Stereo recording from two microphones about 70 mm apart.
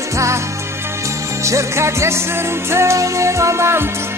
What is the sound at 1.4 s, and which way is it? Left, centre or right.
Music, right.